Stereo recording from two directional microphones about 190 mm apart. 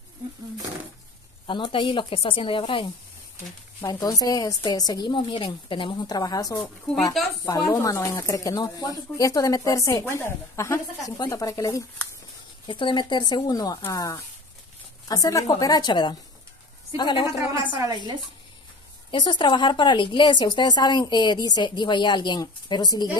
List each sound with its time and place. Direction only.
1.5 s a woman's voice: 25° left (ahead or behind)
17.6 s a woman's voice: 20° right (ahead or behind)
19.0 s a woman's voice: 25° left (ahead or behind)